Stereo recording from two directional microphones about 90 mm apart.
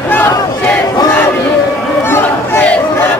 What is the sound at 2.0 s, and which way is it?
Chatter, 25° left (ahead or behind).